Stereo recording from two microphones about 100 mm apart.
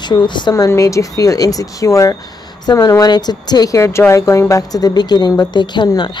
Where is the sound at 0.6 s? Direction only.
30° left (ahead or behind).